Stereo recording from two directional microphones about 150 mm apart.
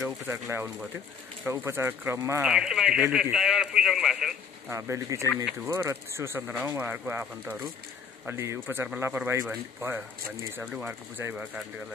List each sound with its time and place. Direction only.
0.0 s speech: 15° right (ahead or behind)
2.4 s speech: 5° right (ahead or behind)
4.6 s speech: 20° right (ahead or behind)